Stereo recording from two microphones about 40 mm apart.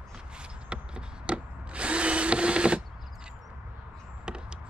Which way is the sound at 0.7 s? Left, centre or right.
Right.